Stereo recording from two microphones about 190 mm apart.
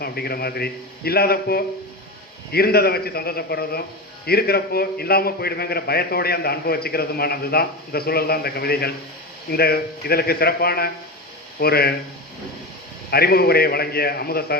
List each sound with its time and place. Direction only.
0.0 s a man's voice: 55° left (ahead or behind)
13.1 s a man's voice: 55° left (ahead or behind)